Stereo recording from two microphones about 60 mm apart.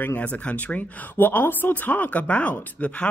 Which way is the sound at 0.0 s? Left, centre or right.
Left.